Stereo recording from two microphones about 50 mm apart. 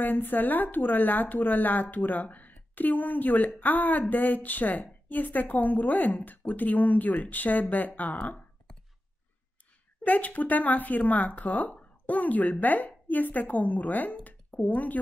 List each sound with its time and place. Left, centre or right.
0.0 s speech: left
10.0 s speech: left